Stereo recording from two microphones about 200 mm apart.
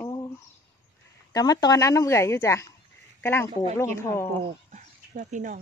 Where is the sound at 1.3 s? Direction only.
20° left (ahead or behind).